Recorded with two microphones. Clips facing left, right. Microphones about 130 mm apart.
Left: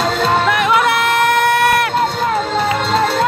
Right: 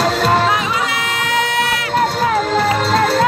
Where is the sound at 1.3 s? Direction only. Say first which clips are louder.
Left 2 dB; 60° left (ahead or behind).